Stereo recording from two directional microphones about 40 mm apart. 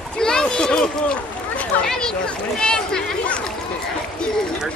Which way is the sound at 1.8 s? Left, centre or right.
Centre.